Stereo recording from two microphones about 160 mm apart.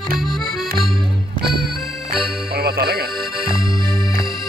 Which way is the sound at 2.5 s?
75° right (ahead or behind).